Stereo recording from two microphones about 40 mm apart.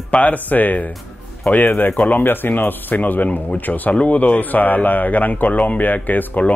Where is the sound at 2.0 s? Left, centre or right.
Left.